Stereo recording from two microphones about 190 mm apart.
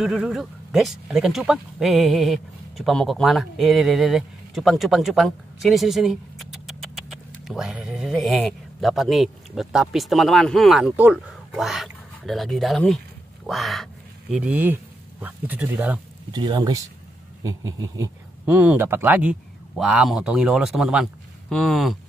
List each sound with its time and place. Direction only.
0.0 s a man's voice: centre (ahead or behind)
16.3 s a sound: 20° right (ahead or behind)
18.4 s a man's voice: 5° right (ahead or behind)